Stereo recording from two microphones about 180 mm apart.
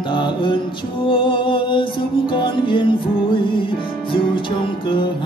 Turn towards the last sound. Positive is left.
turn(degrees=30)  # may be behind; listen again after turning